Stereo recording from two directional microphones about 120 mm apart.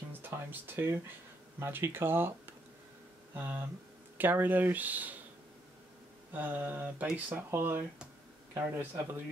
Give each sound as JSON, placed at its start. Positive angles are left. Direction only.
{"t": 0.1, "sound": "music", "side_deg": -15}
{"t": 1.6, "sound": "speech", "side_deg": -20}
{"t": 6.3, "sound": "speech", "side_deg": -15}